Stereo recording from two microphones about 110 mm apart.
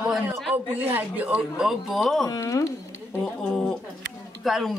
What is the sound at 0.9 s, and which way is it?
Speech, 15° right (ahead or behind).